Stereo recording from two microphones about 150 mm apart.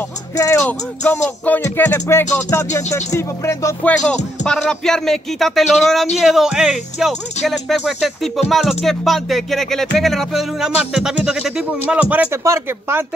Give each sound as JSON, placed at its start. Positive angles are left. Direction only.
{"t": 0.4, "sound": "speech", "side_deg": 15}
{"t": 3.1, "sound": "music", "side_deg": 20}
{"t": 4.5, "sound": "speech", "side_deg": 5}